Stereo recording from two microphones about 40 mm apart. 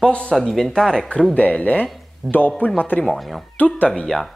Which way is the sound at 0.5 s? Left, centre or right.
Centre.